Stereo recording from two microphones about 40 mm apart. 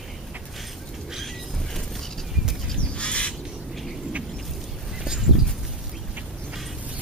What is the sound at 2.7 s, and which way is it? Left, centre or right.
Bird, left.